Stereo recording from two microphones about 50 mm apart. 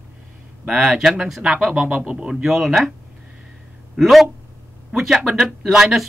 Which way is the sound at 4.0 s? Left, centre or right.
Centre.